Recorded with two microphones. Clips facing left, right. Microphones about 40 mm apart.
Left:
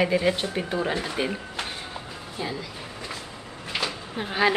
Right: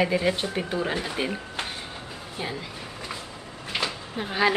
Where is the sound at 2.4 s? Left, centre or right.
Centre.